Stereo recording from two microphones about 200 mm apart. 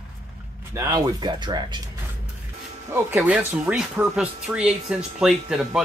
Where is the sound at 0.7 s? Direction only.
20° right (ahead or behind).